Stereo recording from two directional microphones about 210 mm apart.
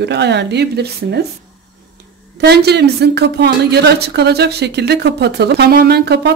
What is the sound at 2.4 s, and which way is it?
A woman's voice, 50° right (ahead or behind).